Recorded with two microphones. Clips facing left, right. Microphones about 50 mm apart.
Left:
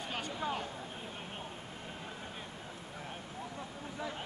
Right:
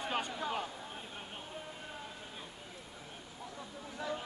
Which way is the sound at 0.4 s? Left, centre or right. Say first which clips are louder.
Left 1 dB; left.